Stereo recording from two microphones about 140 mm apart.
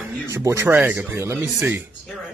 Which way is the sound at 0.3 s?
20° right (ahead or behind).